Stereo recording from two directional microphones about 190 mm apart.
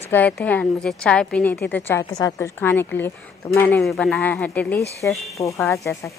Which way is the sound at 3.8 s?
Centre (ahead or behind).